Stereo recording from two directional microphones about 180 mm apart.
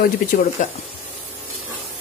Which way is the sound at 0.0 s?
50° left (ahead or behind).